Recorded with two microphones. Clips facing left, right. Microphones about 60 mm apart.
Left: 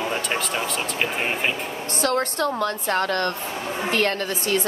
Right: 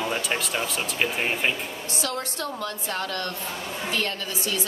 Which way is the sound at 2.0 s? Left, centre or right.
Left.